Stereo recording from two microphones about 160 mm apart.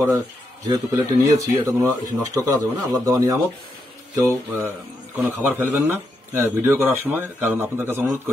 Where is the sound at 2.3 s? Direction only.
20° right (ahead or behind).